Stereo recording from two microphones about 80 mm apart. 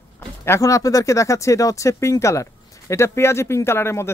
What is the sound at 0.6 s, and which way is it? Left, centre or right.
Speech, left.